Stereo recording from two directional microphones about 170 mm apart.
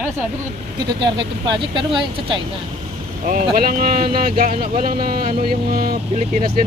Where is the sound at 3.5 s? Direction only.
60° right (ahead or behind).